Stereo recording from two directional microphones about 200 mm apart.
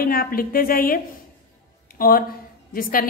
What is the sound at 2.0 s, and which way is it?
A woman's voice, 45° left (ahead or behind).